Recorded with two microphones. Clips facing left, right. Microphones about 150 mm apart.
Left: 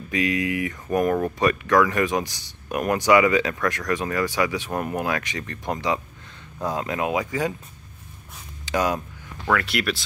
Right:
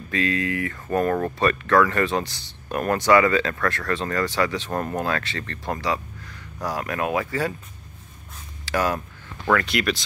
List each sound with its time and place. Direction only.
0.1 s speech: 15° left (ahead or behind)
8.6 s speech: 15° left (ahead or behind)
9.5 s speech: 5° left (ahead or behind)